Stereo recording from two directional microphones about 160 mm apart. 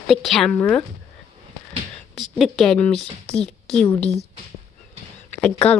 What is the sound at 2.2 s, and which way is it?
A woman's voice, centre (ahead or behind).